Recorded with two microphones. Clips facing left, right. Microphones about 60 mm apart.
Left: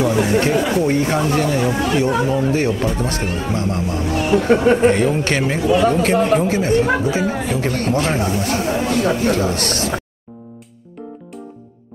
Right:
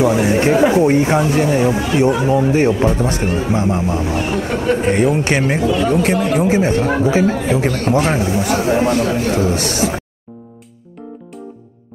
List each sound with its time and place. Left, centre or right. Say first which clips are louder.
0.0 s speech: right 2 dB; right
4.4 s speech: left 7 dB; centre
4.9 s speech: right 2 dB; centre
6.0 s speech: left 1 dB; centre
6.4 s a man's voice: right 1 dB; right